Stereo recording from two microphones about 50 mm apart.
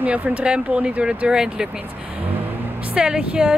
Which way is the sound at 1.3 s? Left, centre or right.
Centre.